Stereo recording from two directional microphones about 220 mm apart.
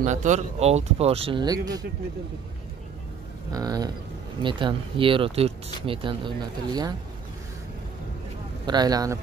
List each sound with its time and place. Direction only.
0.0 s speech: 35° right (ahead or behind); by 1.9 s 15° right (ahead or behind)
3.5 s speech: 15° right (ahead or behind)
8.6 s speech: 20° right (ahead or behind)